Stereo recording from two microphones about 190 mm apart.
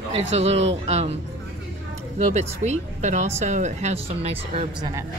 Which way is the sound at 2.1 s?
35° right (ahead or behind).